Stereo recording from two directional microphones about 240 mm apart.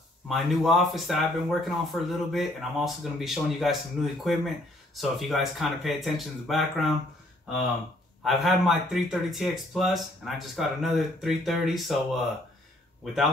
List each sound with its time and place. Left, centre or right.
0.3 s speech: centre
8.2 s speech: centre
13.0 s speech: centre